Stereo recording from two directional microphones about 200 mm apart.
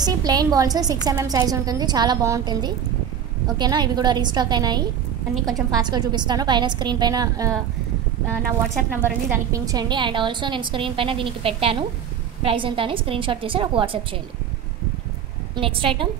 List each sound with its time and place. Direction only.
0.0 s a woman's voice: 20° right (ahead or behind)
9.3 s a woman's voice: 15° right (ahead or behind)
15.5 s a woman's voice: 25° right (ahead or behind)